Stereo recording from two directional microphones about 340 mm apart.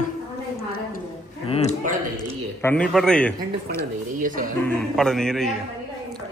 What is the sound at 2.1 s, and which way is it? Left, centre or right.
A man's voice, centre.